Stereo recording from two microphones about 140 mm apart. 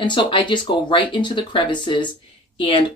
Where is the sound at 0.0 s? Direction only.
35° left (ahead or behind).